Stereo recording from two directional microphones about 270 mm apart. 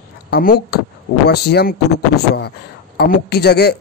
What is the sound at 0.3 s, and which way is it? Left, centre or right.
A man's voice, left.